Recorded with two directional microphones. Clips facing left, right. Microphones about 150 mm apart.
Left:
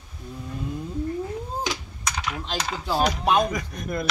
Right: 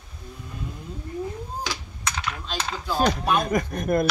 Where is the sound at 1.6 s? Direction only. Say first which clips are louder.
Left 2 dB; 15° left (ahead or behind).